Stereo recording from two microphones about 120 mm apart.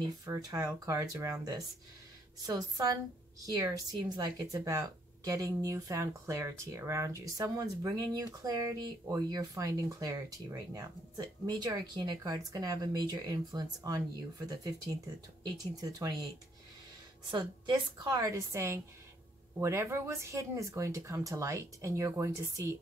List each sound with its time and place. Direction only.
0.2 s a woman's voice: 30° right (ahead or behind)
17.3 s a woman's voice: 35° right (ahead or behind)